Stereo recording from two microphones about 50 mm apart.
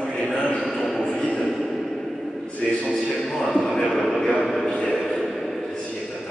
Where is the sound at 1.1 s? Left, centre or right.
Left.